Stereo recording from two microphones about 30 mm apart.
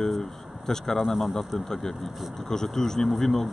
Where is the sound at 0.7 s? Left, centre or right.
Centre.